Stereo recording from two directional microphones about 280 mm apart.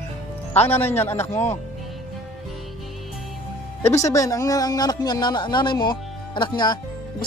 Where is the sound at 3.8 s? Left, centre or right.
Centre.